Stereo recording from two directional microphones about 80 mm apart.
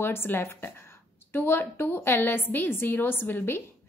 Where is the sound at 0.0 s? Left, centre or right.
Left.